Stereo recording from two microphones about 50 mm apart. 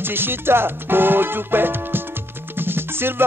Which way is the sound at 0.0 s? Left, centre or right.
Right.